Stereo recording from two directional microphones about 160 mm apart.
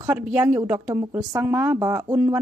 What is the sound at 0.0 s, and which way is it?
A woman's voice, 10° right (ahead or behind).